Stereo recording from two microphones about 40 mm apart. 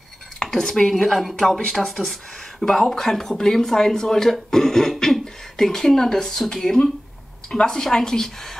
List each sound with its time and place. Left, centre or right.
0.4 s speech: centre
1.1 s speech: centre